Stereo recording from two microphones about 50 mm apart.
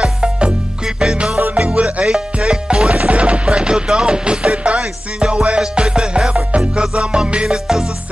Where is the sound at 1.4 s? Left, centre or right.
Right.